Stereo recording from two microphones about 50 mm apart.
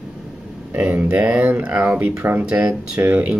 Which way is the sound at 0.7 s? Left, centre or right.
Right.